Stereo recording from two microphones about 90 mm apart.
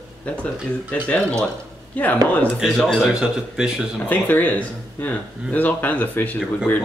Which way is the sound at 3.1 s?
5° right (ahead or behind).